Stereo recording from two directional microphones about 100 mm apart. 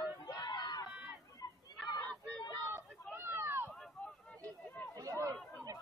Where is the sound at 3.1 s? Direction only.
25° right (ahead or behind).